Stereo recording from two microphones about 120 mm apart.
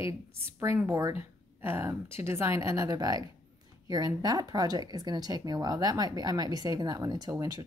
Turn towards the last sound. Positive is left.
turn(degrees=-30)  # may be behind; listen again after turning